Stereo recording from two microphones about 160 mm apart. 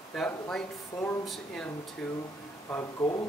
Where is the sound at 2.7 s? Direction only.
20° left (ahead or behind).